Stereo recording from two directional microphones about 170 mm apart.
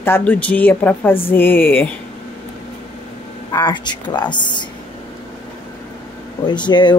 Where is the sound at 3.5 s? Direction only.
25° left (ahead or behind).